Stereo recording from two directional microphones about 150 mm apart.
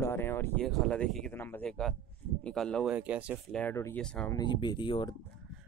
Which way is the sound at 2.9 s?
10° right (ahead or behind).